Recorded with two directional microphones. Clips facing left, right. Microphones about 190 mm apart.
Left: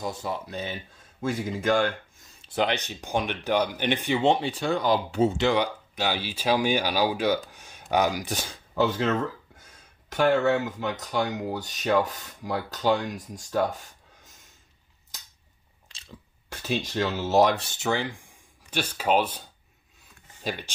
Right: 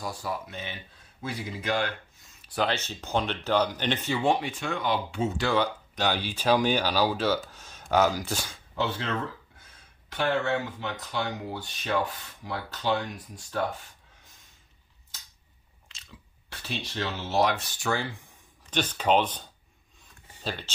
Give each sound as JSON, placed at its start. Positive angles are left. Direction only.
{"t": 0.0, "sound": "speech", "side_deg": 20}
{"t": 0.5, "sound": "speech", "side_deg": 40}
{"t": 2.4, "sound": "speech", "side_deg": 20}
{"t": 5.3, "sound": "speech", "side_deg": 20}
{"t": 8.7, "sound": "speech", "side_deg": 45}
{"t": 16.4, "sound": "speech", "side_deg": 45}
{"t": 17.6, "sound": "speech", "side_deg": 25}
{"t": 20.4, "sound": "speech", "side_deg": 15}